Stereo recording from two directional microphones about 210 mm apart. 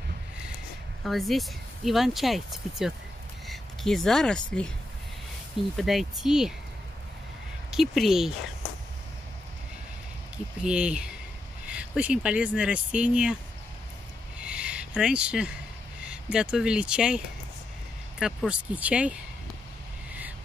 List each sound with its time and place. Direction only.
1.0 s speech: centre (ahead or behind)
5.8 s speech: centre (ahead or behind)
7.7 s speech: centre (ahead or behind)
10.3 s speech: 5° right (ahead or behind)
14.4 s a sound: 5° right (ahead or behind)
16.1 s speech: 5° right (ahead or behind)
18.2 s speech: 5° right (ahead or behind)